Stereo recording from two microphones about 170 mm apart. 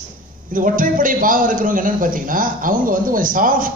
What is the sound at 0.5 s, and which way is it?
A man's voice, 55° right (ahead or behind).